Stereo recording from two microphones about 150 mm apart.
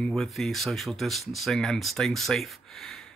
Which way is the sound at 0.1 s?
Centre (ahead or behind).